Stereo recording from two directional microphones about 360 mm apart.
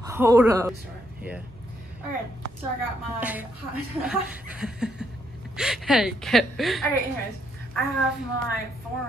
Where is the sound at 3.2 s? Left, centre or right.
Centre.